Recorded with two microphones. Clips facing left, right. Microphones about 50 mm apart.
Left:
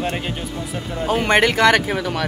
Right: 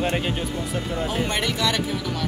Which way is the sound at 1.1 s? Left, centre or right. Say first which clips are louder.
Left 12 dB; left.